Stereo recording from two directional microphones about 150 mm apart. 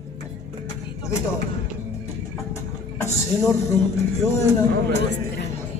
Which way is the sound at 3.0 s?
20° left (ahead or behind).